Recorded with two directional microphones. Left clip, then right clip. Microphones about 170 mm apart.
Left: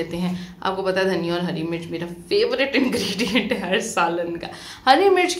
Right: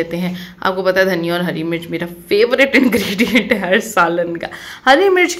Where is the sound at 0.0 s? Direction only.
25° right (ahead or behind).